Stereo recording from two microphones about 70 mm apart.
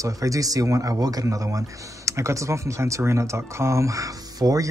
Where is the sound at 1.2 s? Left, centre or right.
Right.